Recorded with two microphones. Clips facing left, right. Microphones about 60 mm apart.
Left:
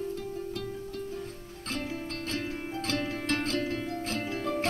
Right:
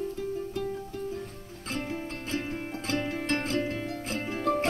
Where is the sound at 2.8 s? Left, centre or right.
Centre.